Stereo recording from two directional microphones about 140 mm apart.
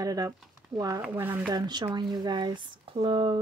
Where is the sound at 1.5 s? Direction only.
30° right (ahead or behind).